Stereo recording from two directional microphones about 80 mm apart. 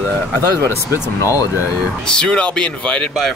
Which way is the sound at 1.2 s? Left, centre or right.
Left.